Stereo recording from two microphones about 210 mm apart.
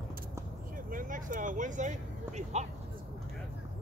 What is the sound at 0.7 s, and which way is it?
Vehicle, 40° right (ahead or behind).